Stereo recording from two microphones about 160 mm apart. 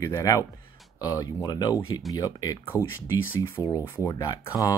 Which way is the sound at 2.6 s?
15° left (ahead or behind).